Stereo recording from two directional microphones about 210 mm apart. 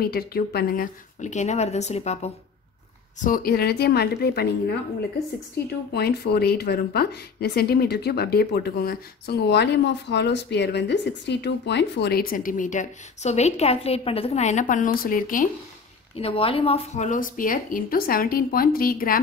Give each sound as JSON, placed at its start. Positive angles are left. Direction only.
{"t": 0.0, "sound": "speech", "side_deg": 45}
{"t": 3.2, "sound": "a woman's voice", "side_deg": 40}
{"t": 16.2, "sound": "speech", "side_deg": 25}